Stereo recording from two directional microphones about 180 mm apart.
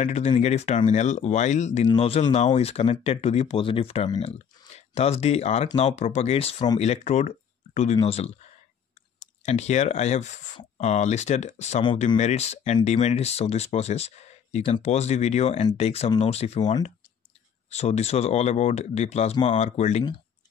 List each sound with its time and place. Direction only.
0.0 s speech: 40° left (ahead or behind)
9.4 s speech: 40° left (ahead or behind)